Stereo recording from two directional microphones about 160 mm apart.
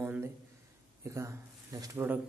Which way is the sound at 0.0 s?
10° right (ahead or behind).